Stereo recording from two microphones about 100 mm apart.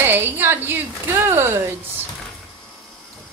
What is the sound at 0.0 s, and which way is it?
Speech, 20° right (ahead or behind).